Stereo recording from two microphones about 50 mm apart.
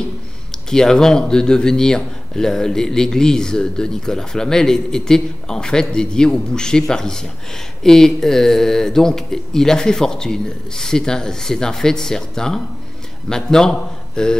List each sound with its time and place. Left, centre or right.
0.7 s speech: centre